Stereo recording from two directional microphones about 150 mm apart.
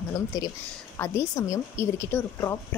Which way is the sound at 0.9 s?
15° left (ahead or behind).